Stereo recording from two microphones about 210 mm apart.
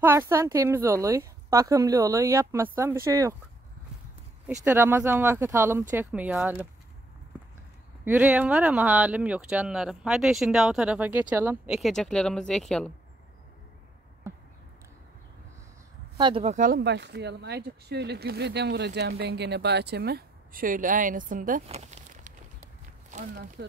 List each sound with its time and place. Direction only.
0.0 s a woman's voice: 10° right (ahead or behind)
4.5 s a woman's voice: 10° right (ahead or behind)
8.0 s speech: 10° right (ahead or behind)
16.2 s speech: 25° right (ahead or behind)